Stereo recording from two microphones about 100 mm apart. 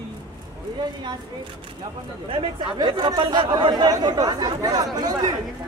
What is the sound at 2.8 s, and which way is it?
Speech, 50° right (ahead or behind).